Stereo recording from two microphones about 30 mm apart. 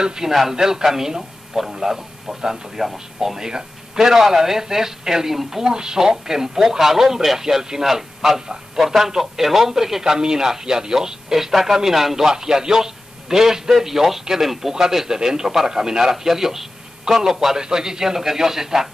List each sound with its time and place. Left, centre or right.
0.0 s a man's voice: right
11.3 s a man's voice: centre
17.6 s a man's voice: right